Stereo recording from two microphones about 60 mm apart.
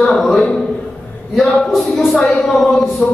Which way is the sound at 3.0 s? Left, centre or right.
Left.